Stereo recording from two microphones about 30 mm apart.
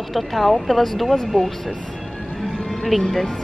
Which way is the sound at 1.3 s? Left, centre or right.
Left.